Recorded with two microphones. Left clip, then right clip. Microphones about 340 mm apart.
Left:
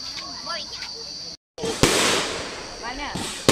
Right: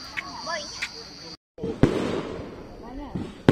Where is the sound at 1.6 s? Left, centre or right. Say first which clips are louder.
Left 5 dB; left.